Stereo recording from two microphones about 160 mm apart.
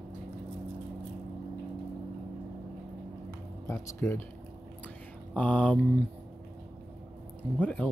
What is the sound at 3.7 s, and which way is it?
Speech, 15° left (ahead or behind).